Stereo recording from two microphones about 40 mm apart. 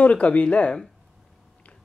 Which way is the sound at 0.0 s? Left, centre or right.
Left.